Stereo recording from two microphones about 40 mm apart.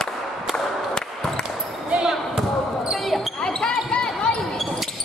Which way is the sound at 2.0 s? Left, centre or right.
Centre.